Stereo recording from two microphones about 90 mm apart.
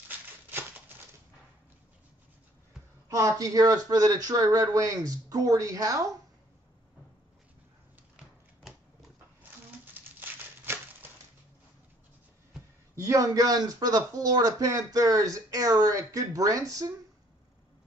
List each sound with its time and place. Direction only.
3.1 s speech: 35° right (ahead or behind)
10.2 s a sound: 20° right (ahead or behind)
12.9 s speech: 35° right (ahead or behind)